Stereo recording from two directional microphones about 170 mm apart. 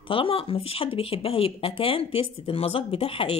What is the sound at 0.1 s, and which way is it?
Speech, 30° left (ahead or behind).